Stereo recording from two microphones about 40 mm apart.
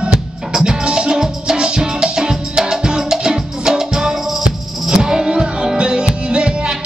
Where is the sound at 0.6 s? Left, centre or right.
Centre.